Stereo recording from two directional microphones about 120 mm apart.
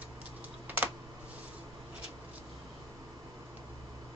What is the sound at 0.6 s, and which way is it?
Computer keyboard, 15° right (ahead or behind).